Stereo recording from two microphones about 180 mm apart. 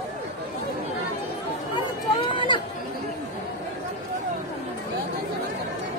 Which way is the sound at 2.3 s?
25° left (ahead or behind).